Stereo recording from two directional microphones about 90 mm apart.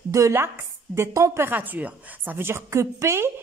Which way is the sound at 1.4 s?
20° right (ahead or behind).